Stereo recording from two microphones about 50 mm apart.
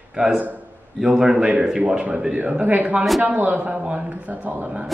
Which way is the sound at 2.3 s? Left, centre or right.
Right.